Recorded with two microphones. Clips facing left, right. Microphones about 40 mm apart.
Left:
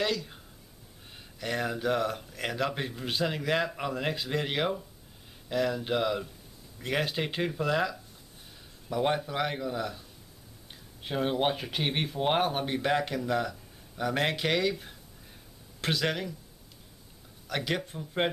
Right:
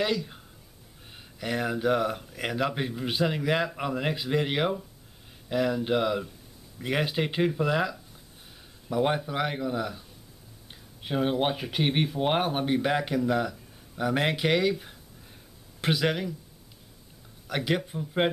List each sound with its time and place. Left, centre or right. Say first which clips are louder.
0.0 s speech: right 2 dB; centre
17.5 s speech: right 3 dB; centre